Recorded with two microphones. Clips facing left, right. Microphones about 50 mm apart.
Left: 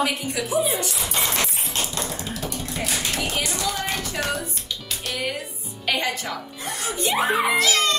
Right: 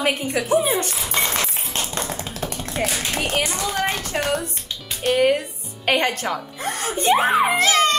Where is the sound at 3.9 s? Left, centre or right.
Right.